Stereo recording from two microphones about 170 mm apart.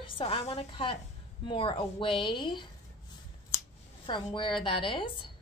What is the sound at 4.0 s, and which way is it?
A woman's voice, 30° left (ahead or behind).